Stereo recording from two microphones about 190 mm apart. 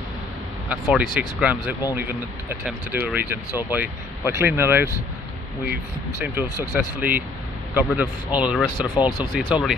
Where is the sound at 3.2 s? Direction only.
10° right (ahead or behind).